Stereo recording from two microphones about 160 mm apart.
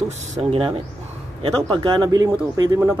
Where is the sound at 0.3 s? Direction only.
35° right (ahead or behind).